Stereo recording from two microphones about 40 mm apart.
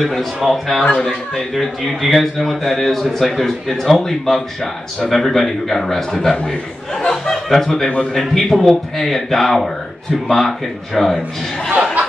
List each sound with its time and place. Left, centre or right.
0.0 s speech: centre
0.9 s speech: centre
1.5 s speech: centre
7.0 s a sound: centre
8.0 s speech: centre
11.8 s music: right